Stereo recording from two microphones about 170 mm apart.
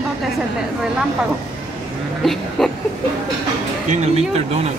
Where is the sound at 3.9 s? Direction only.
40° right (ahead or behind).